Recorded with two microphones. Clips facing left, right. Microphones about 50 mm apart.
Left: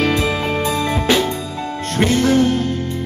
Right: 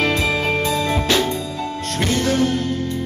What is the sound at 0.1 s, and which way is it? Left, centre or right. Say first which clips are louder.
Music: left 1 dB; centre.